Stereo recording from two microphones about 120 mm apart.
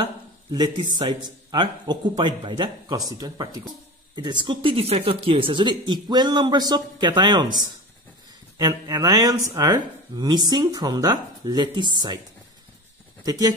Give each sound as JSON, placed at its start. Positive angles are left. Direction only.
{"t": 0.0, "sound": "speech", "side_deg": -35}
{"t": 13.2, "sound": "speech", "side_deg": -30}